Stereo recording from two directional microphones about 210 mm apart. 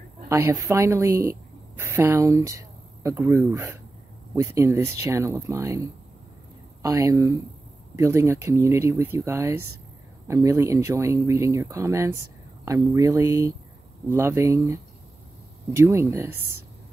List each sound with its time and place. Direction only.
0.3 s speech: 15° right (ahead or behind)
16.3 s speech: 90° right